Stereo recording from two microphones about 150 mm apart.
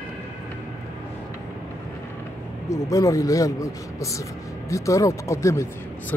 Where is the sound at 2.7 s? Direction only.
20° left (ahead or behind).